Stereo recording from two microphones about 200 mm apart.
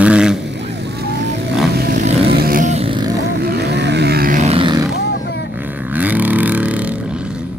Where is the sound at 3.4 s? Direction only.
55° right (ahead or behind); by 4.8 s 25° right (ahead or behind).